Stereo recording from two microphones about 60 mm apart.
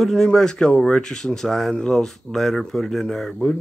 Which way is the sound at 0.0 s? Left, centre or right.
Centre.